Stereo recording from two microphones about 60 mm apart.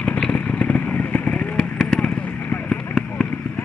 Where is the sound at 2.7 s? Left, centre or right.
Centre.